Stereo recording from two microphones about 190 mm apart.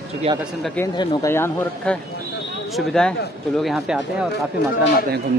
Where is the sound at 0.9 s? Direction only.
15° left (ahead or behind); by 4.3 s 5° right (ahead or behind).